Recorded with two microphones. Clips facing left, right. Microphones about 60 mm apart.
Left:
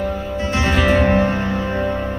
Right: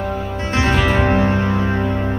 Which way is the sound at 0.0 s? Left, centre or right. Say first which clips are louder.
Left 1 dB; right.